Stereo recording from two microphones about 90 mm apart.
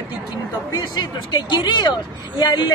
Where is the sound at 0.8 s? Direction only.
60° left (ahead or behind).